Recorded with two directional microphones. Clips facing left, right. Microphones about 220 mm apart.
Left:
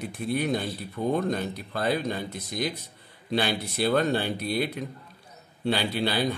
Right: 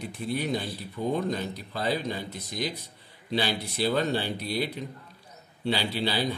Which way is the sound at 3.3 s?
55° left (ahead or behind).